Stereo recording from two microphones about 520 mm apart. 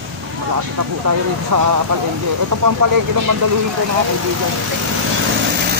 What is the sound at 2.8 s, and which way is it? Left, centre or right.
Speech, right.